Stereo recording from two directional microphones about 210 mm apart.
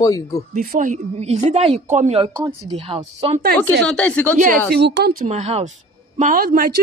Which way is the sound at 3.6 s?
5° left (ahead or behind).